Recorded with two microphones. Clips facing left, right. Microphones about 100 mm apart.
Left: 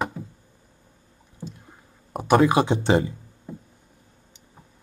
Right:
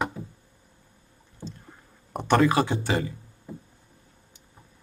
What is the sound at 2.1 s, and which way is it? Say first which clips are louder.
Speech: left 3 dB; 10° left (ahead or behind).